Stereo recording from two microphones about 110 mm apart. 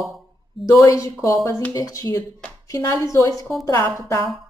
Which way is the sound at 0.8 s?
30° left (ahead or behind).